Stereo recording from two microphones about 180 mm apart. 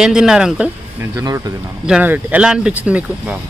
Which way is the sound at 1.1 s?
20° right (ahead or behind).